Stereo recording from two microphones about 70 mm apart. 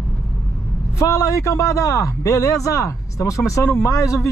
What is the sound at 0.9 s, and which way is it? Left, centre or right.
A man's voice, left.